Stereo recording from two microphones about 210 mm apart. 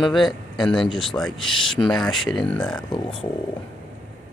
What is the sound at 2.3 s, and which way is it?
Speech, 5° left (ahead or behind).